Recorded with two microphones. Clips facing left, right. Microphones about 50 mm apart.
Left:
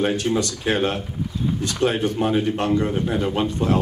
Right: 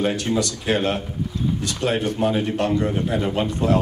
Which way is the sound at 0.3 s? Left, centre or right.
Left.